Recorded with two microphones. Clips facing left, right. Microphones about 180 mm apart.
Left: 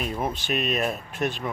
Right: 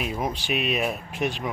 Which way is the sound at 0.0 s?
10° right (ahead or behind).